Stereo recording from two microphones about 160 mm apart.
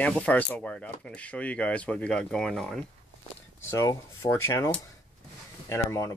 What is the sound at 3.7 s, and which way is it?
Speech, 20° left (ahead or behind).